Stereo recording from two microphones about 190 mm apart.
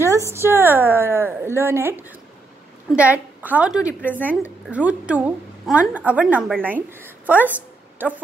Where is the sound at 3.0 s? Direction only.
10° right (ahead or behind).